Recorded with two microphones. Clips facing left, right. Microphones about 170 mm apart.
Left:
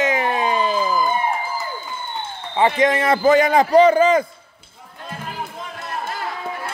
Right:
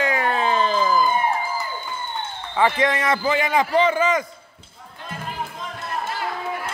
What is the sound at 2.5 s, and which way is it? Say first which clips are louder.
Speech: left 3 dB; 25° left (ahead or behind).